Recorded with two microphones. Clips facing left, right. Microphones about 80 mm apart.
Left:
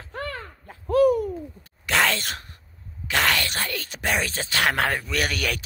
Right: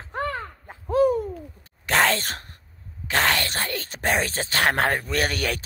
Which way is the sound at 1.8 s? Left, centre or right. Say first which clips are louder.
Right 2 dB; right.